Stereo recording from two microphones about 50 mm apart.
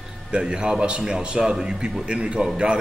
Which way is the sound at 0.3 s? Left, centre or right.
Centre.